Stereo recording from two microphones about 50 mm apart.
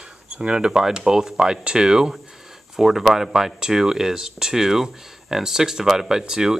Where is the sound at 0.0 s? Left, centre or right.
Centre.